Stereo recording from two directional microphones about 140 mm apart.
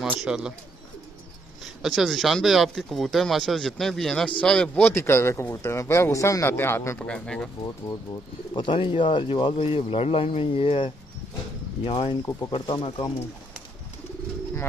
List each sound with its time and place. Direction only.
0.0 s speech: 5° right (ahead or behind)
1.8 s speech: centre (ahead or behind); by 7.0 s 20° left (ahead or behind)
7.0 s speech: 5° left (ahead or behind)
8.5 s speech: 40° left (ahead or behind)